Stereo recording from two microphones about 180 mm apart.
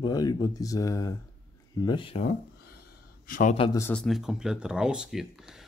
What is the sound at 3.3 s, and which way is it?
Speech, 45° left (ahead or behind).